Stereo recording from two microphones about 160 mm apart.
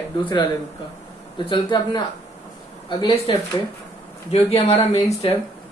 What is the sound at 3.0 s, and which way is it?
A man's voice, 35° left (ahead or behind).